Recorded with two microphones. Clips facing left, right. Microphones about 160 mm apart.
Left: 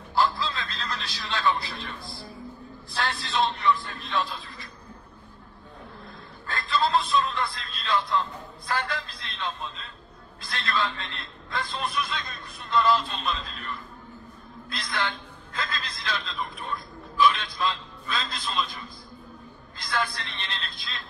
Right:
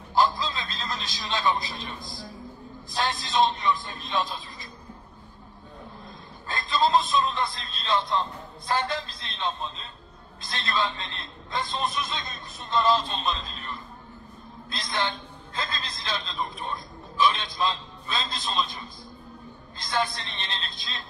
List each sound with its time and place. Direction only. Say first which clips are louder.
0.1 s a sound: right 1 dB; 20° right (ahead or behind)
2.9 s a man's voice: right 2 dB; 20° right (ahead or behind)
6.4 s a man's voice: right 1 dB; 20° right (ahead or behind)